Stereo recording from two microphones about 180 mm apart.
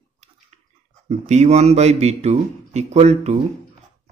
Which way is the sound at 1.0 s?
40° right (ahead or behind).